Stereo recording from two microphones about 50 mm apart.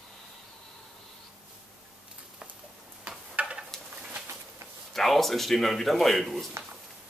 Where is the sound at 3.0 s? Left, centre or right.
Right.